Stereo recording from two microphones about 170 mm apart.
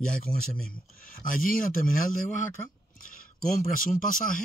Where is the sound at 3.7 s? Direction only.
55° left (ahead or behind).